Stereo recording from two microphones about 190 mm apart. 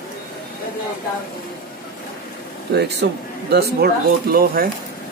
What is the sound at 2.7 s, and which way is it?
Speech, 60° right (ahead or behind).